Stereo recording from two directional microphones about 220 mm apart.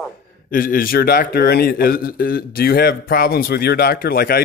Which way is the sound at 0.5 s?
40° left (ahead or behind).